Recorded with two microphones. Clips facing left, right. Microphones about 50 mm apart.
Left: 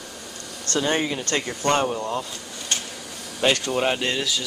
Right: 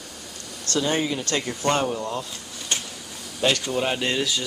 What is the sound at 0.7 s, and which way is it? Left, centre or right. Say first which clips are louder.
Speech: left 1 dB; centre.